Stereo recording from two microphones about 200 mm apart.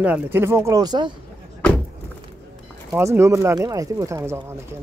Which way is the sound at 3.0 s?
15° right (ahead or behind).